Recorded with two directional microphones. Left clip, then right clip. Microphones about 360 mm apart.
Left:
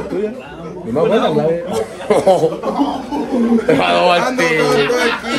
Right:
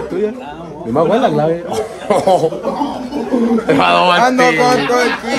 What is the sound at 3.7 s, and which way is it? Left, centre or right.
Speech, centre.